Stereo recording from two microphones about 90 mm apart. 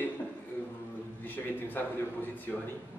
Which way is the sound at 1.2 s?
20° left (ahead or behind).